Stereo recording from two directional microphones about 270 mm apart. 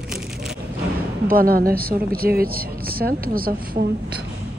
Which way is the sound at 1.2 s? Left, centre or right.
Right.